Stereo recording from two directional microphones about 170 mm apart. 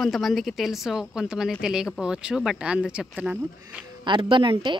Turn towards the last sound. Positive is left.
turn(degrees=-30)  # may be behind; listen again after turning